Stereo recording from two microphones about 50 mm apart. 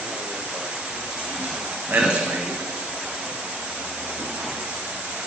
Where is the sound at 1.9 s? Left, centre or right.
Right.